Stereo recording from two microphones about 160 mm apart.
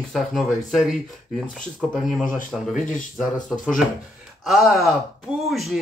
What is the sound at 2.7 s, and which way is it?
Speech, 50° left (ahead or behind).